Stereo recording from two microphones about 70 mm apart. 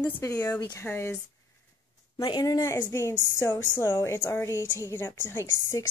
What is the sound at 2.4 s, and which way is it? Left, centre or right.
A woman's voice, left.